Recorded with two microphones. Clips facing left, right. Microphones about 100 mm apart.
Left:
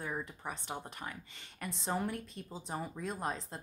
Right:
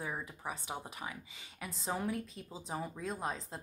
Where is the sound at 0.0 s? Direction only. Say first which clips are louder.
Left 1 dB; 5° right (ahead or behind).